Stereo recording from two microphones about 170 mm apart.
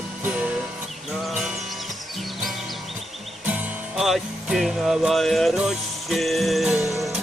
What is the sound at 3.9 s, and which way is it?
Music, centre (ahead or behind).